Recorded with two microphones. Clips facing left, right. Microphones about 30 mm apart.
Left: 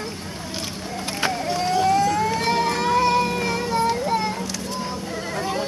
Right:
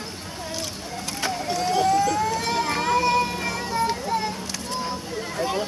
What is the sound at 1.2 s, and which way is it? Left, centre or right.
Vehicle, centre.